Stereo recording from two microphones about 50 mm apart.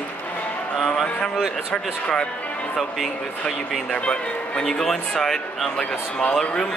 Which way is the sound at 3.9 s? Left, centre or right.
Centre.